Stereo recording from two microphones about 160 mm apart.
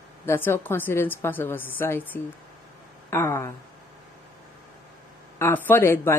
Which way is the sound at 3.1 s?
15° left (ahead or behind).